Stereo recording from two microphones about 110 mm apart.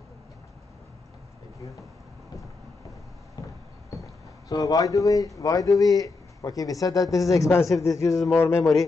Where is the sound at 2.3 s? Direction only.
35° left (ahead or behind).